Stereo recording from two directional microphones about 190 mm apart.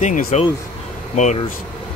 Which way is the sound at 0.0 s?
40° left (ahead or behind).